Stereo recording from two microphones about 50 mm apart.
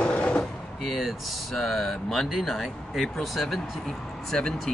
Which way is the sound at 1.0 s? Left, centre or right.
Centre.